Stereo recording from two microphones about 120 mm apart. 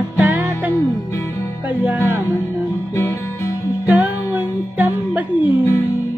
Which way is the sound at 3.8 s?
15° right (ahead or behind).